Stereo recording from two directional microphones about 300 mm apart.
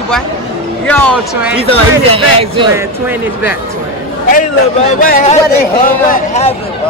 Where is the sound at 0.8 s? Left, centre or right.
Centre.